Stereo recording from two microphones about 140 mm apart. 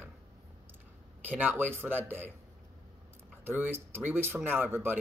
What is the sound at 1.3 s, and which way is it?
Speech, 15° right (ahead or behind).